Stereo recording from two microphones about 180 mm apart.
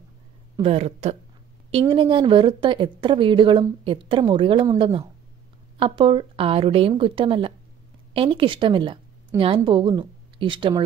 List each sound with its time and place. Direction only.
0.6 s a woman's voice: 35° right (ahead or behind)